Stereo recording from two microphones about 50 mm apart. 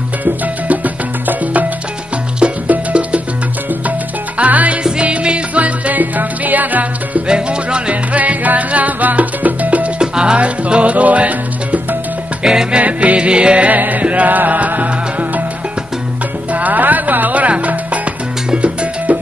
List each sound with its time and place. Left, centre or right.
0.2 s music: right
2.7 s music: right
4.4 s music: right
7.2 s music: right
9.9 s music: centre
12.4 s music: centre
12.8 s music: right
13.7 s music: right
16.5 s music: right
18.5 s salsa music: right